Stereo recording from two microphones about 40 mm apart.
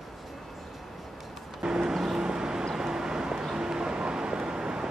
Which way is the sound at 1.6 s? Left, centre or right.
Centre.